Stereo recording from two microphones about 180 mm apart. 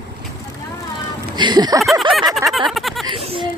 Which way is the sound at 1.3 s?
25° right (ahead or behind).